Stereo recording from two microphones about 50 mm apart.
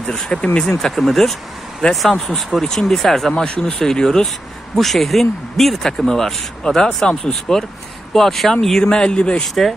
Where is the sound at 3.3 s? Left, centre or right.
Centre.